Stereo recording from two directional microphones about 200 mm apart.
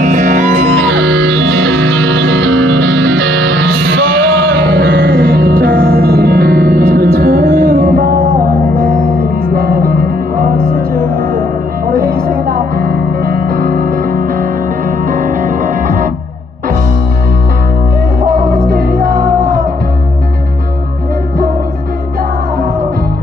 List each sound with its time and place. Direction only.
0.0 s music: 40° right (ahead or behind)
0.7 s music: 70° right (ahead or behind); by 8.3 s 45° right (ahead or behind)
9.5 s music: 50° right (ahead or behind)
11.9 s music: 50° right (ahead or behind)
18.2 s music: 50° right (ahead or behind)